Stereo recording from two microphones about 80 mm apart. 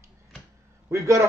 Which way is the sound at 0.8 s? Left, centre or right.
Right.